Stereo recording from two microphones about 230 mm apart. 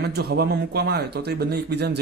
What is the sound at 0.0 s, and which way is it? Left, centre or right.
Speech, right.